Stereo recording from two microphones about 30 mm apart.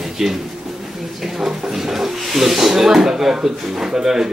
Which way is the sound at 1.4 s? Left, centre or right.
Centre.